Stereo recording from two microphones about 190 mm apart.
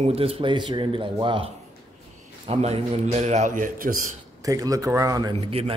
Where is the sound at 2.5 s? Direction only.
35° right (ahead or behind).